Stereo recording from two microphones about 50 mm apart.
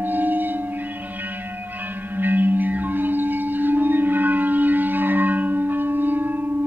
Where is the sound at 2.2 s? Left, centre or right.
Right.